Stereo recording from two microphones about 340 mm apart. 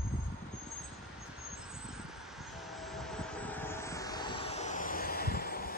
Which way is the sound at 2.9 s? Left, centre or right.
Centre.